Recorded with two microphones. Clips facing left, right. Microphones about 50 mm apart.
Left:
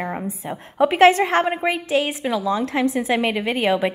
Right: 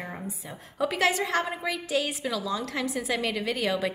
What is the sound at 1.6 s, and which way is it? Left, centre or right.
A woman's voice, left.